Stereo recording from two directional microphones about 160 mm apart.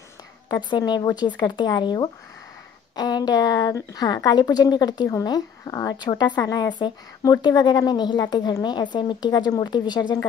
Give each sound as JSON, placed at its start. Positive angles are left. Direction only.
{"t": 0.5, "sound": "speech", "side_deg": 25}